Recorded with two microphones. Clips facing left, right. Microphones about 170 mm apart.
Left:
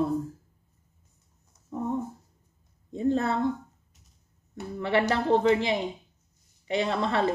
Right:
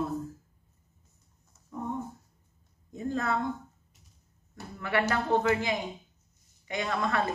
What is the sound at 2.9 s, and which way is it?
Speech, 30° left (ahead or behind).